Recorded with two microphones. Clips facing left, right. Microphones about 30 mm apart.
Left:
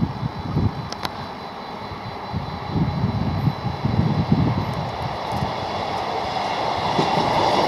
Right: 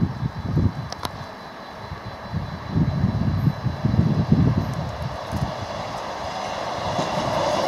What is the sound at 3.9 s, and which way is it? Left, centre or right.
Vehicle, left.